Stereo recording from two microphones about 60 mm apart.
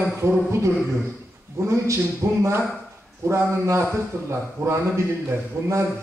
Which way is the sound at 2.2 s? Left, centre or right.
Right.